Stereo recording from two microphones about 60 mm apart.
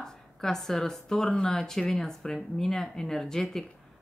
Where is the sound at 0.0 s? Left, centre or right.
Centre.